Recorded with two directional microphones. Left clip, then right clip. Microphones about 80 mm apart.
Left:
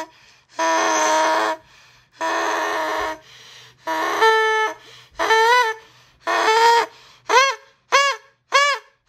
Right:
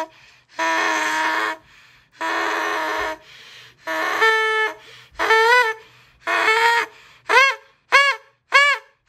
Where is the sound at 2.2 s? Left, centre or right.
Left.